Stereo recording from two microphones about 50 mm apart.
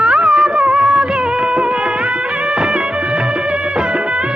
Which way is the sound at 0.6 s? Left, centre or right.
Centre.